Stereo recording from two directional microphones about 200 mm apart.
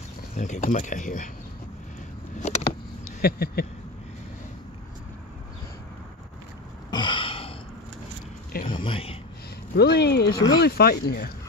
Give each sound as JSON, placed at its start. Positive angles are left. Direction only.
{"t": 0.3, "sound": "speech", "side_deg": 40}
{"t": 2.4, "sound": "vehicle", "side_deg": 35}
{"t": 3.2, "sound": "speech", "side_deg": 50}
{"t": 6.9, "sound": "a sound", "side_deg": 25}
{"t": 8.6, "sound": "a sound", "side_deg": 25}
{"t": 9.8, "sound": "speech", "side_deg": 55}